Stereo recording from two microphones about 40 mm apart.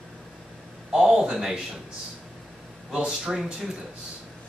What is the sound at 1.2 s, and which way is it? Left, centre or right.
Speech, centre.